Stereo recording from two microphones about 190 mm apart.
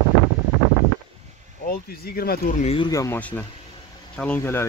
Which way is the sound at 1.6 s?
55° left (ahead or behind).